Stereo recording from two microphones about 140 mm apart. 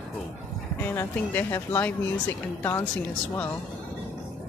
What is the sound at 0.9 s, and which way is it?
Speech, 15° left (ahead or behind).